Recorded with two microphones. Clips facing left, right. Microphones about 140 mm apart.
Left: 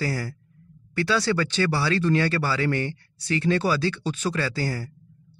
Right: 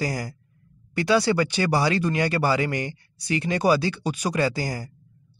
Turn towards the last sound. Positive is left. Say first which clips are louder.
# right 2 dB
turn(degrees=-15)  # may be behind; listen again after turning